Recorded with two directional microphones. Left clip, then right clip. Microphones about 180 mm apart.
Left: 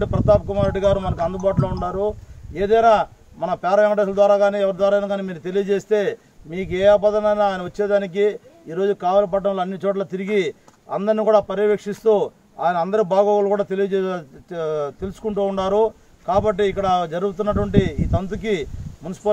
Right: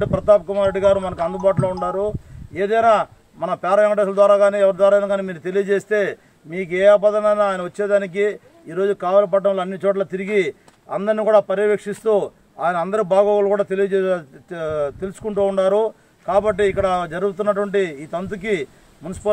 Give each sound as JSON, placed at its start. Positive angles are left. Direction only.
{"t": 0.0, "sound": "speech", "side_deg": -10}